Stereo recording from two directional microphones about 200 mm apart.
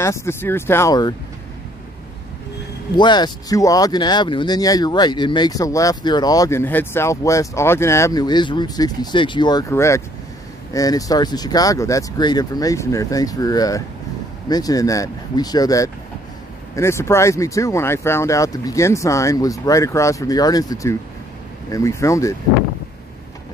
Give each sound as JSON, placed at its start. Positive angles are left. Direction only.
{"t": 0.0, "sound": "speech", "side_deg": 15}
{"t": 3.0, "sound": "speech", "side_deg": 20}